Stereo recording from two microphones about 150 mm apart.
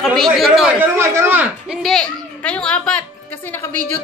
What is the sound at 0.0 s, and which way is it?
Speech, centre (ahead or behind).